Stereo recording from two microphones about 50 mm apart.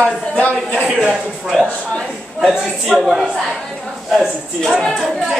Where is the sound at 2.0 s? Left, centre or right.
Centre.